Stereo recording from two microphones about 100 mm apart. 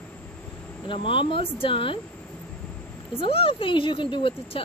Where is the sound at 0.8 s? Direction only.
60° left (ahead or behind).